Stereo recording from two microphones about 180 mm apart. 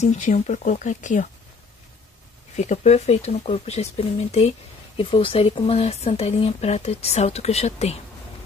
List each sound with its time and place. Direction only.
0.0 s speech: 40° left (ahead or behind)
2.5 s speech: 40° left (ahead or behind)